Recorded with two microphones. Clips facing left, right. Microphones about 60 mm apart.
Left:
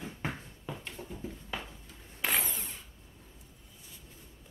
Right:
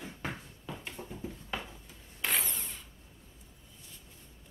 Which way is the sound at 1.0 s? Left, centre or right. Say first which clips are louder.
Even; right.